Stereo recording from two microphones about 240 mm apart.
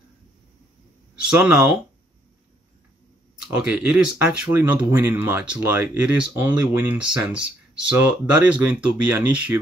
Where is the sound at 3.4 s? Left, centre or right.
Centre.